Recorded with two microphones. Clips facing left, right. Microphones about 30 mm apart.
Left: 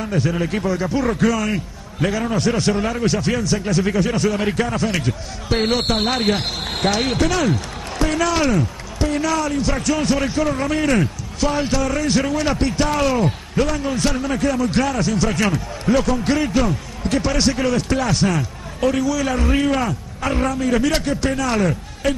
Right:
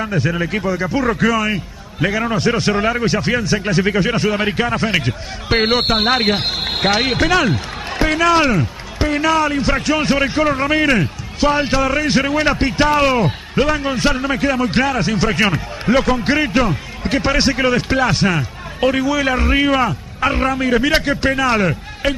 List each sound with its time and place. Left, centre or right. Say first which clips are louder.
0.1 s a man's voice: right 2 dB; centre